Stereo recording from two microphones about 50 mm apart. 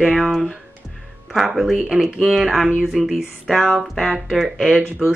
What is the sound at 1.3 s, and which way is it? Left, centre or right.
Speech, centre.